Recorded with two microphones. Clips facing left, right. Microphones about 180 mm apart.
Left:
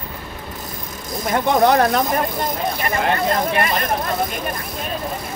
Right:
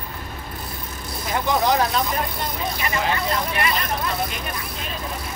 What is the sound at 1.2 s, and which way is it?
Speech, 55° left (ahead or behind).